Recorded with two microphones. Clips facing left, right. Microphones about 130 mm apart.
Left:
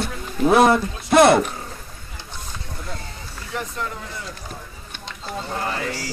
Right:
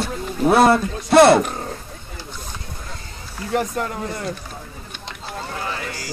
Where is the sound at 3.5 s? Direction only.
55° right (ahead or behind).